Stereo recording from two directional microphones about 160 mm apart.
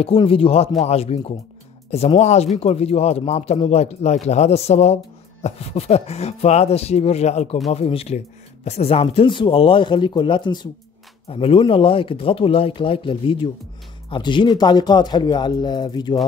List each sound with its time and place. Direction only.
0.0 s speech: 35° left (ahead or behind)